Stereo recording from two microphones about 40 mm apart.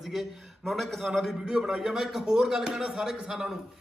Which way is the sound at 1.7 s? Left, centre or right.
Centre.